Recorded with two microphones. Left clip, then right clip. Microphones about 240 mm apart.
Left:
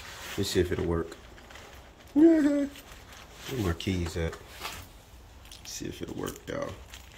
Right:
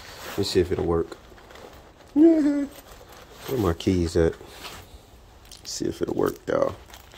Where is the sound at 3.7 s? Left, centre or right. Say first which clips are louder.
Right 9 dB; centre.